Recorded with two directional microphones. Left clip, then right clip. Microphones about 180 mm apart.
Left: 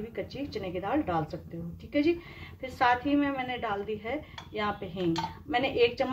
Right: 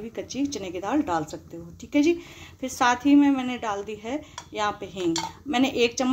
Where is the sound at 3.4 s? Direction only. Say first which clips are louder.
Right 3 dB; 30° right (ahead or behind).